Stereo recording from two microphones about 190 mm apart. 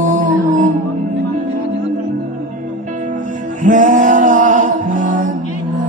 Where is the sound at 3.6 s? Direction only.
40° right (ahead or behind).